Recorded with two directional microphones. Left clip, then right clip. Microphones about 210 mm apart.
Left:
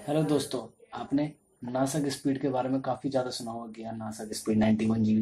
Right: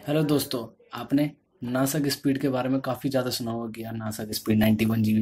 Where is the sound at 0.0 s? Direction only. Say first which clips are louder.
Right 3 dB; 30° right (ahead or behind).